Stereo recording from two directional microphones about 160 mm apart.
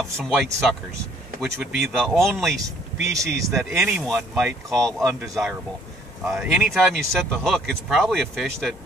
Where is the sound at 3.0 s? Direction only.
20° right (ahead or behind).